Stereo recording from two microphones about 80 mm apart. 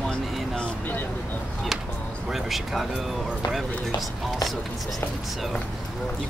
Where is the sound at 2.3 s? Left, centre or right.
Centre.